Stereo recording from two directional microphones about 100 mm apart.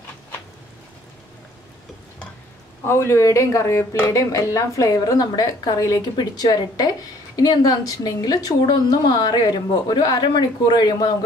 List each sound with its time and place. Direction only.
2.8 s speech: 25° left (ahead or behind); by 11.1 s 45° left (ahead or behind)